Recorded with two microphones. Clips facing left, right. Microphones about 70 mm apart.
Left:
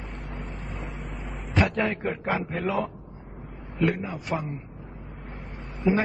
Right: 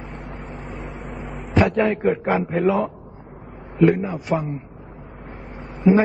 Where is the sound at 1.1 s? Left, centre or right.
Centre.